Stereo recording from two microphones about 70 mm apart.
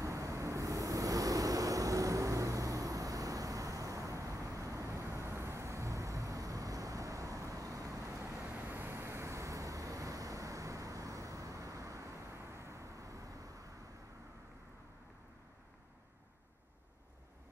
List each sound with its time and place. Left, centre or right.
0.0 s vehicle: right
8.4 s vehicle: centre
8.6 s vehicle: right